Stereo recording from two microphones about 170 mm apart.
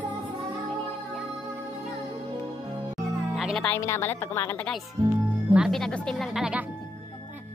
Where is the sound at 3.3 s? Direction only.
5° right (ahead or behind).